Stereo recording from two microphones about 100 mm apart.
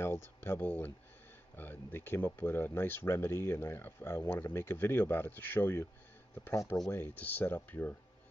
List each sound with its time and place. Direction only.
0.0 s speech: 25° left (ahead or behind)
6.9 s speech: 20° left (ahead or behind)